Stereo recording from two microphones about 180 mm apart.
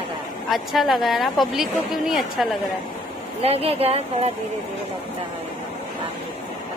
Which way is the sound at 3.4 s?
35° right (ahead or behind).